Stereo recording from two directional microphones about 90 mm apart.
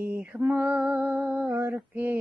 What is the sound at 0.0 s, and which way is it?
Music, 20° right (ahead or behind).